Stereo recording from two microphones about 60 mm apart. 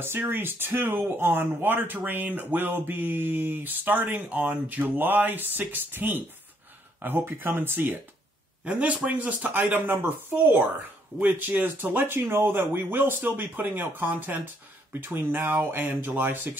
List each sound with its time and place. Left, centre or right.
0.0 s speech: right
8.6 s speech: right